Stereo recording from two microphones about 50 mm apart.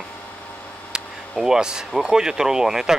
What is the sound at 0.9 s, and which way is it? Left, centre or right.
Speech, centre.